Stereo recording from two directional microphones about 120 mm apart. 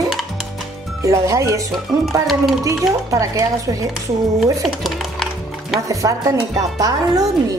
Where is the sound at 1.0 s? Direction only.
25° right (ahead or behind).